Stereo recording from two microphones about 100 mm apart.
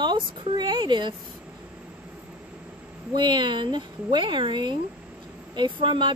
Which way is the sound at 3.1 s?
50° right (ahead or behind).